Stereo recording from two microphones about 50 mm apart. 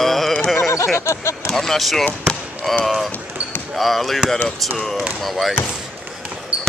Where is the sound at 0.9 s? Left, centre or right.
Left.